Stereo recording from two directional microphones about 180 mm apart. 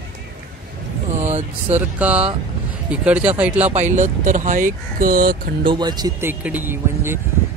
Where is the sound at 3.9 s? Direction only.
45° right (ahead or behind).